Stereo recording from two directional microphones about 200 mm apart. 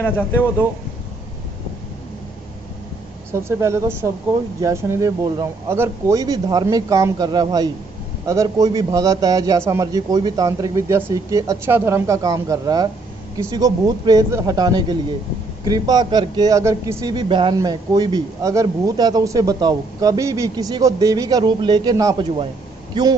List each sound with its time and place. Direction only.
3.3 s a man's voice: 15° right (ahead or behind)